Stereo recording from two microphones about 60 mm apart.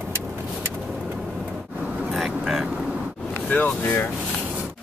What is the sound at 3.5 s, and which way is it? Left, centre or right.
Speech, left.